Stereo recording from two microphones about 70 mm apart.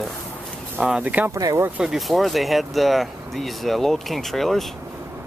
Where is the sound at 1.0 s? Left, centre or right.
Right.